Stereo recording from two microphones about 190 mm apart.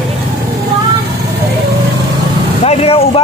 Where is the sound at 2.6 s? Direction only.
30° left (ahead or behind).